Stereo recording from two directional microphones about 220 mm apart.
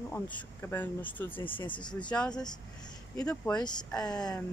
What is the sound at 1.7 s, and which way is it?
Speech, 20° left (ahead or behind).